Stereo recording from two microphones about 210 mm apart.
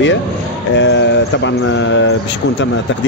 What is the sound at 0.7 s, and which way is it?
Speech, 60° left (ahead or behind).